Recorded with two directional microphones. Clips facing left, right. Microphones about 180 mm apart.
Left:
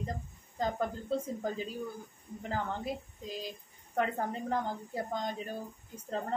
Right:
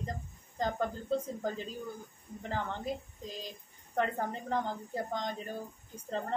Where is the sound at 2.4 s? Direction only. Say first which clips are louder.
Left 1 dB; 5° left (ahead or behind).